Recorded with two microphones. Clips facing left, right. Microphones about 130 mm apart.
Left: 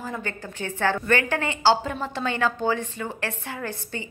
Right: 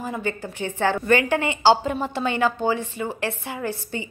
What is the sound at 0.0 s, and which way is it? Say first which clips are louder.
A woman's voice: right 4 dB; 15° right (ahead or behind).